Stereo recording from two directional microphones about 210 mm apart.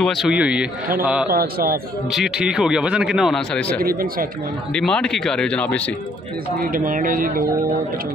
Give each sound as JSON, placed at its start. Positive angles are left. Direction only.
{"t": 0.0, "sound": "a man's voice", "side_deg": 0}
{"t": 1.3, "sound": "speech", "side_deg": -45}
{"t": 2.0, "sound": "a man's voice", "side_deg": -5}
{"t": 3.8, "sound": "speech", "side_deg": -45}
{"t": 4.7, "sound": "a man's voice", "side_deg": 5}
{"t": 6.6, "sound": "speech", "side_deg": -40}